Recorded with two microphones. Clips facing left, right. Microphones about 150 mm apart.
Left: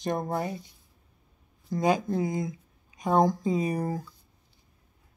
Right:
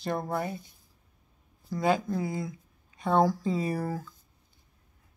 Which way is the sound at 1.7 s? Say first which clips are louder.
Left 3 dB; 50° left (ahead or behind).